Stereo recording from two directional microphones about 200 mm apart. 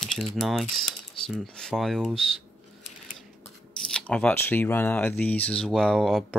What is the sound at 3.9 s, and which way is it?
Speech, 5° left (ahead or behind).